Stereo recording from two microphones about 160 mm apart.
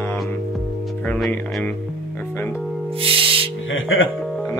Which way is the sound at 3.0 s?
35° right (ahead or behind).